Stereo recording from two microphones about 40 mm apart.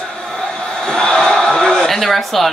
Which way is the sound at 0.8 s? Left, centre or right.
Centre.